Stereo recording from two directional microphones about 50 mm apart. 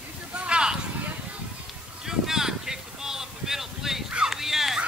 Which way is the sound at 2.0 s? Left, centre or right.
Centre.